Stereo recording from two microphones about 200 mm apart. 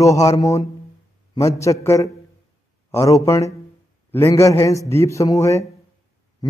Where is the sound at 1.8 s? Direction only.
15° left (ahead or behind).